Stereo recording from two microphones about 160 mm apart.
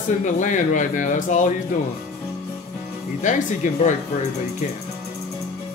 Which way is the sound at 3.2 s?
50° left (ahead or behind).